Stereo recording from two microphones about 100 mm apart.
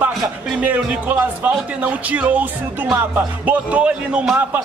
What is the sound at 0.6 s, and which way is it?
Speech, 15° right (ahead or behind).